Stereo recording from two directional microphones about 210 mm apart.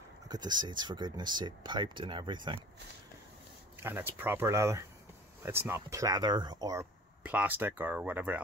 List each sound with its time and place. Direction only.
0.3 s speech: 20° right (ahead or behind)
3.8 s speech: 10° right (ahead or behind)